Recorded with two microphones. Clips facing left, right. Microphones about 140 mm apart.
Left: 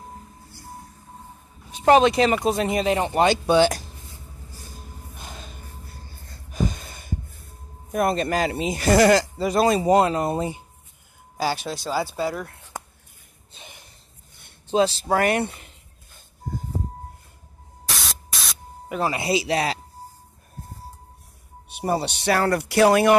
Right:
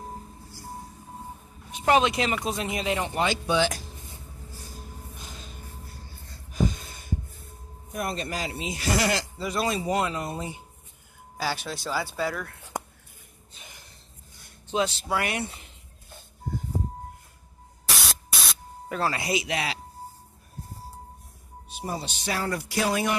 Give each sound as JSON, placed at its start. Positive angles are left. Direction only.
{"t": 1.7, "sound": "speech", "side_deg": 35}
{"t": 5.2, "sound": "snort", "side_deg": 60}
{"t": 7.9, "sound": "speech", "side_deg": 60}
{"t": 11.5, "sound": "speech", "side_deg": 25}
{"t": 13.6, "sound": "snort", "side_deg": 25}
{"t": 14.4, "sound": "speech", "side_deg": 30}
{"t": 18.0, "sound": "spray", "side_deg": 0}
{"t": 18.9, "sound": "speech", "side_deg": 15}
{"t": 19.2, "sound": "speech", "side_deg": 30}
{"t": 21.6, "sound": "speech", "side_deg": 65}